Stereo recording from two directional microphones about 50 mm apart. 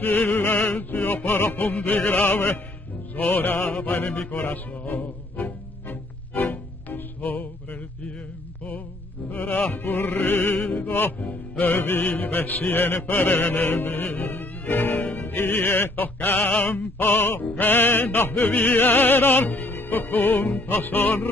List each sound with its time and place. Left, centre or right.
0.0 s music: left
0.6 s music: left
9.3 s music: left
11.1 s music: left
16.4 s opera: left
17.6 s music: left